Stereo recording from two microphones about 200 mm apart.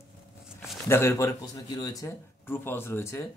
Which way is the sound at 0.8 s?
15° left (ahead or behind).